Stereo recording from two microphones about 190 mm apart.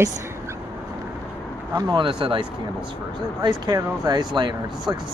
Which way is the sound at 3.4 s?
20° right (ahead or behind).